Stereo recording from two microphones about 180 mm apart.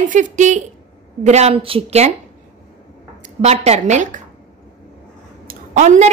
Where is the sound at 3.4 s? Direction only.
35° right (ahead or behind).